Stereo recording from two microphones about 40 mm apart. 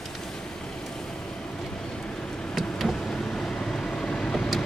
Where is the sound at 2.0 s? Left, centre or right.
Left.